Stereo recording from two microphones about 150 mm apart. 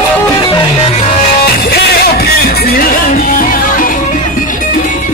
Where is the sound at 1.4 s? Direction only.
90° left; by 3.9 s 65° left (ahead or behind).